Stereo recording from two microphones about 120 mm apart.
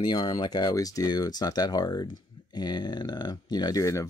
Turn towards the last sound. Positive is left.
turn(degrees=25)  # may be behind; listen again after turning